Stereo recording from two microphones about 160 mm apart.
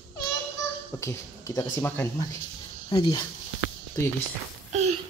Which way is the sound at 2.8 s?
30° left (ahead or behind).